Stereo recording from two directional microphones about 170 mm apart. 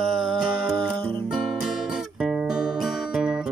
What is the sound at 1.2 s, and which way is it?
Music, 5° right (ahead or behind).